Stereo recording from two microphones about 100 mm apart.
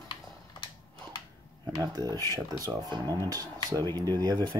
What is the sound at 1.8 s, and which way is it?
Speech, 35° right (ahead or behind).